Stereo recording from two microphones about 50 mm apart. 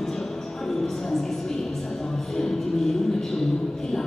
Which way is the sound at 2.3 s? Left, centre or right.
Centre.